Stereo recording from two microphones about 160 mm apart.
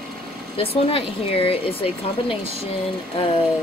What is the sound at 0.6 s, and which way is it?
Speech, 35° left (ahead or behind).